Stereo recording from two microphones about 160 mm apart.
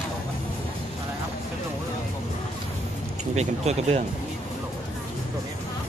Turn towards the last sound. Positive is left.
turn(degrees=-40)  # may be behind; listen again after turning